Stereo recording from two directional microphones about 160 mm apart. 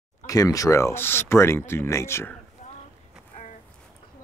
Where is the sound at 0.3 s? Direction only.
20° left (ahead or behind).